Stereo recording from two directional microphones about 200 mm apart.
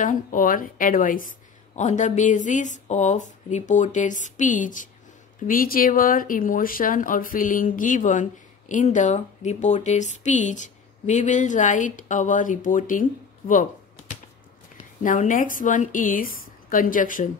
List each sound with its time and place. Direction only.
0.0 s speech: 40° left (ahead or behind)
15.0 s speech: 40° left (ahead or behind)